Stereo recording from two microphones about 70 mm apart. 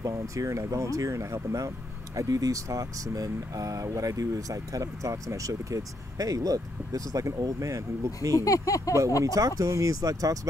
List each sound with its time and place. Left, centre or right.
0.0 s speech: right
8.4 s speech: left
9.2 s speech: right